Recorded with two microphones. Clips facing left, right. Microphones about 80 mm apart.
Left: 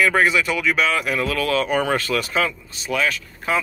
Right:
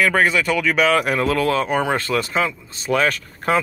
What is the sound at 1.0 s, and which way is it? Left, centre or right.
Speech, right.